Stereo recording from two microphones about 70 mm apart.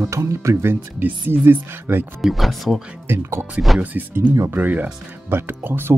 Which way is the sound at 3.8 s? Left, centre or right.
Right.